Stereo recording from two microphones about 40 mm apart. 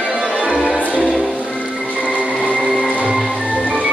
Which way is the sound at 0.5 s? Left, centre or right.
Left.